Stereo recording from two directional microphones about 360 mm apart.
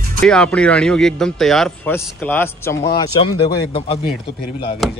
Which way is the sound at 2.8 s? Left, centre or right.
Centre.